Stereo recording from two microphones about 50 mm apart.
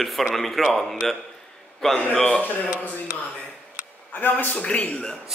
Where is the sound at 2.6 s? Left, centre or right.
Right.